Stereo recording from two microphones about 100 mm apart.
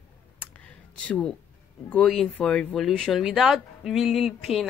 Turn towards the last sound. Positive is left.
turn(degrees=0)  # may be behind; listen again after turning